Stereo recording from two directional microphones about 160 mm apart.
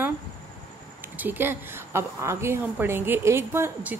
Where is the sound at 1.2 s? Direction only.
10° right (ahead or behind).